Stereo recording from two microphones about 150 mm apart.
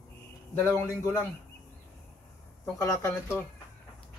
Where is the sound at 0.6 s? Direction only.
20° left (ahead or behind).